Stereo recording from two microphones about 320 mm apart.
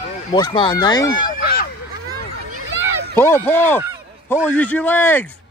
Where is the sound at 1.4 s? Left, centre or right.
Left.